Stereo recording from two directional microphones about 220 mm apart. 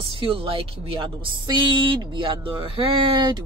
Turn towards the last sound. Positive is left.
turn(degrees=-20)  # may be behind; listen again after turning